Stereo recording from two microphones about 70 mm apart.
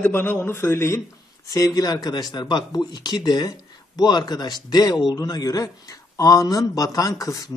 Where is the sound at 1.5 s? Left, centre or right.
Left.